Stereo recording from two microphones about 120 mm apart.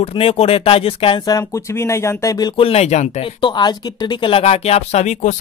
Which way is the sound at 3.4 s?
40° left (ahead or behind).